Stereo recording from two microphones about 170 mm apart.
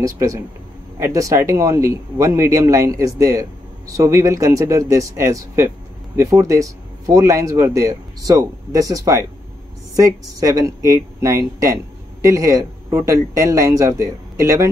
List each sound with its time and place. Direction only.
0.0 s speech: 20° right (ahead or behind)